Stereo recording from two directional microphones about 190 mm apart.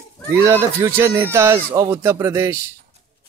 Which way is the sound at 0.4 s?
15° right (ahead or behind).